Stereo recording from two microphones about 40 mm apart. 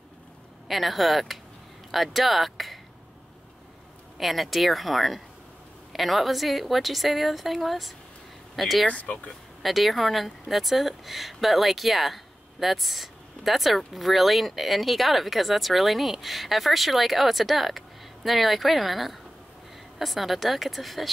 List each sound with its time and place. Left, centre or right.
0.7 s speech: centre
4.2 s speech: centre
8.8 s speech: left
9.6 s speech: centre